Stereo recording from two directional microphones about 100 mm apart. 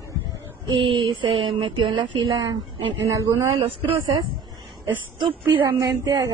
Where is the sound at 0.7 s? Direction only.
60° right (ahead or behind).